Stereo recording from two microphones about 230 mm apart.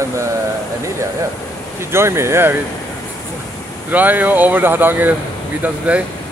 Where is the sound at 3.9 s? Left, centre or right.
Centre.